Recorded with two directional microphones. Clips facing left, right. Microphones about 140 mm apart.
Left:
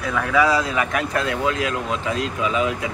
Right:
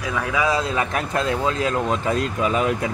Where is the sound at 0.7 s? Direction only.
30° right (ahead or behind); by 2.7 s 45° right (ahead or behind).